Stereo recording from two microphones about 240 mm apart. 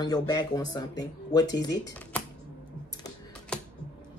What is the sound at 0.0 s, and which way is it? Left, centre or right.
Speech, centre.